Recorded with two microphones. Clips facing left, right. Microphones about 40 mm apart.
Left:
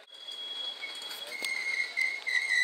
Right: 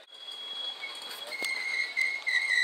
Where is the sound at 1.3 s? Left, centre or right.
Right.